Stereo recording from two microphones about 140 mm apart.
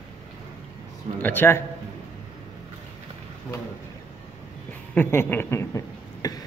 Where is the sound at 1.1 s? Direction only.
15° left (ahead or behind).